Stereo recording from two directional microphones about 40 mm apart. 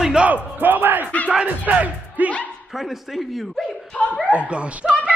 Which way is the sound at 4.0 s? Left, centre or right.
Left.